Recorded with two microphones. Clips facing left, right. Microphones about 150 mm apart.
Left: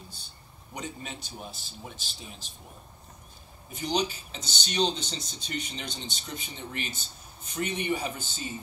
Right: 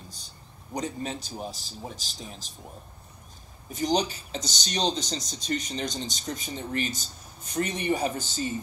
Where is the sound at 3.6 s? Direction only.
40° right (ahead or behind).